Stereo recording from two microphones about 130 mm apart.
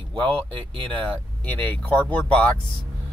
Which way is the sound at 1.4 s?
10° left (ahead or behind).